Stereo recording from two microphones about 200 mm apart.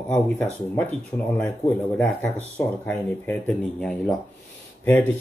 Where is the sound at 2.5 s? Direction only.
5° left (ahead or behind).